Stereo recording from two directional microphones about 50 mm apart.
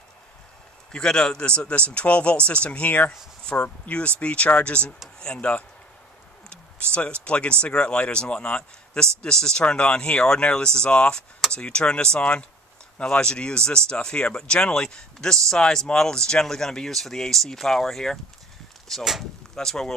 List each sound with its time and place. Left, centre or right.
0.9 s speech: centre
6.9 s speech: left